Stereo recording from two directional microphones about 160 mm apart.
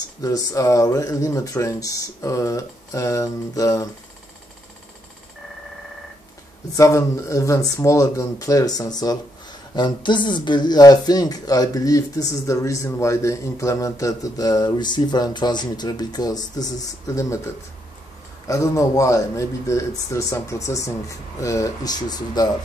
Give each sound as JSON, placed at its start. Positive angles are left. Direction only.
{"t": 0.2, "sound": "speech", "side_deg": 20}
{"t": 6.8, "sound": "speech", "side_deg": 20}
{"t": 18.5, "sound": "speech", "side_deg": 20}